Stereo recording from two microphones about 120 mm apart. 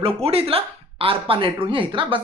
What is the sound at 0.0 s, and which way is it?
Speech, 55° right (ahead or behind).